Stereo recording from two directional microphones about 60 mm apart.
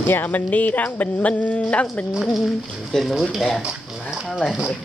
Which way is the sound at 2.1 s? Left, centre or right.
Centre.